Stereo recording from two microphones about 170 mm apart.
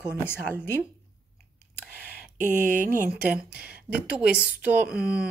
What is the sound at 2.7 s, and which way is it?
Speech, 55° right (ahead or behind).